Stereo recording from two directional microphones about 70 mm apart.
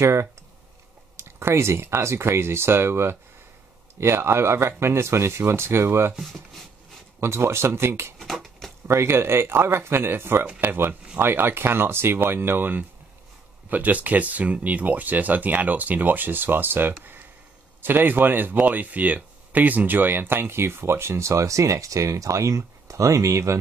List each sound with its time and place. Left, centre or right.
0.0 s speech: right
1.1 s a sound: right
2.0 s speech: right
7.2 s speech: right
8.2 s a sound: centre
8.8 s speech: right